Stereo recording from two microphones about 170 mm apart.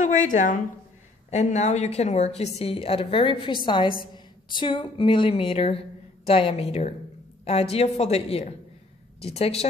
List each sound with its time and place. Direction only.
0.0 s a woman's voice: 45° left (ahead or behind)